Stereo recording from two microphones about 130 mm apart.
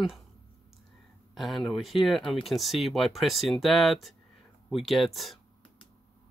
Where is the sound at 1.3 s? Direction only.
Centre (ahead or behind).